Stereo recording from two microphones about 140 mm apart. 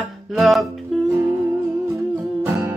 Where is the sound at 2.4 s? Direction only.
20° right (ahead or behind).